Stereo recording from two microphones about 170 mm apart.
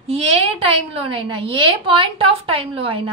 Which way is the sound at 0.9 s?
35° right (ahead or behind).